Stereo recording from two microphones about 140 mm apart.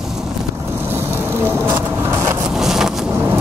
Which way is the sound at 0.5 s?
20° right (ahead or behind).